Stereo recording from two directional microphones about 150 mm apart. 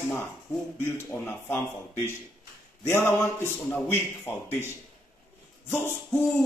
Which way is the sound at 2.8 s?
15° left (ahead or behind).